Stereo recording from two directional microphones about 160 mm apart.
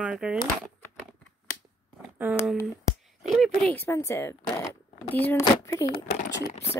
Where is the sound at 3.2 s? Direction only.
Centre (ahead or behind).